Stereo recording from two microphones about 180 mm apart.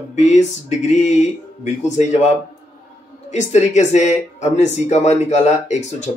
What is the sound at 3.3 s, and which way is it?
Speech, 40° left (ahead or behind).